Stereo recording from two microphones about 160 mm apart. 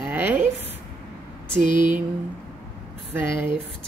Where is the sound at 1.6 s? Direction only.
30° left (ahead or behind).